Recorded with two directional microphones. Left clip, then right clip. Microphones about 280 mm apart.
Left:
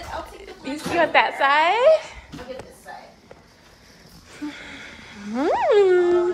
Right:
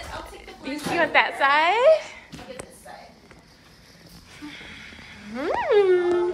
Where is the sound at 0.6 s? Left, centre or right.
Centre.